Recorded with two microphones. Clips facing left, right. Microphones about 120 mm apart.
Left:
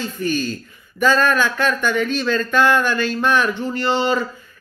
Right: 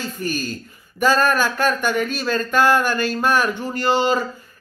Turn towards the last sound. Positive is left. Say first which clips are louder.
# right 1 dB
turn(degrees=-10)  # may be behind; listen again after turning